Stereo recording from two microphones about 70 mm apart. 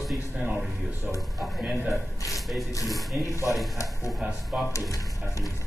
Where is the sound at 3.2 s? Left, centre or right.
Left.